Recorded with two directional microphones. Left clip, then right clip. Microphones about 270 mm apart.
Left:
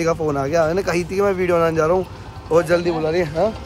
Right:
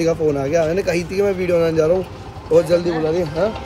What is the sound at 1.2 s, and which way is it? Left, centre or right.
Speech, left.